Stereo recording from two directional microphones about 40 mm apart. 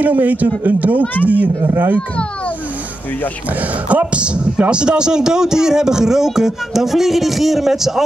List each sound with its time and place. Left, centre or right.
0.0 s a man's voice: right
3.9 s speech: right; by 8.0 s centre